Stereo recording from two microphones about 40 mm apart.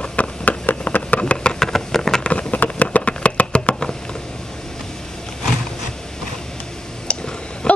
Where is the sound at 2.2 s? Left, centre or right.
Left.